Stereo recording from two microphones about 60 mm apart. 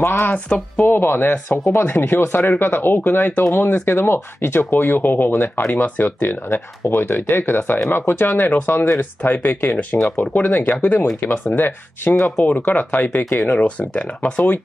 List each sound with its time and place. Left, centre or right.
0.0 s speech: left
0.7 s speech: left
12.4 s speech: centre
12.6 s speech: left